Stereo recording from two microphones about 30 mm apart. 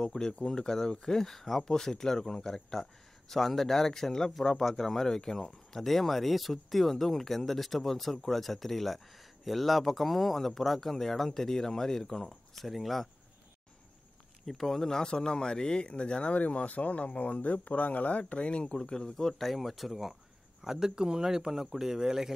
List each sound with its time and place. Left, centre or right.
0.0 s speech: centre
12.5 s speech: centre
14.4 s speech: centre
15.0 s speech: left
16.3 s speech: left
16.6 s speech: left
18.8 s speech: left
19.5 s speech: centre
20.6 s a man's voice: centre